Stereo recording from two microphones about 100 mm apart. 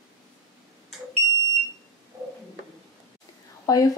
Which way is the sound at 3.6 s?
40° left (ahead or behind).